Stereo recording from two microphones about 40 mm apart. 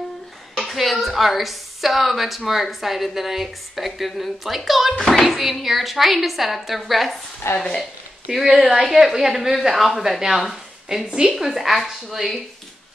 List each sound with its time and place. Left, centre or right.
0.6 s a woman's voice: centre
7.4 s stir: left
8.5 s a woman's voice: centre